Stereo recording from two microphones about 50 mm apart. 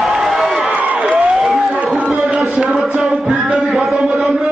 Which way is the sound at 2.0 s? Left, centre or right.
Centre.